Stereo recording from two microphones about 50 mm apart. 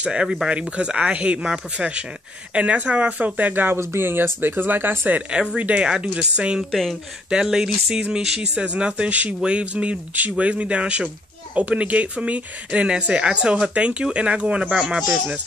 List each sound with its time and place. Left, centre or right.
0.0 s speech: centre
0.5 s speech: right
1.4 s speech: centre
2.5 s speech: right
3.7 s speech: right
5.3 s speech: centre
6.7 s speech: centre
7.2 s speech: centre